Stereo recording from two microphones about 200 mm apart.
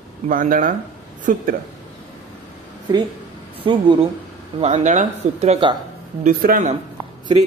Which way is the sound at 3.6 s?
25° right (ahead or behind).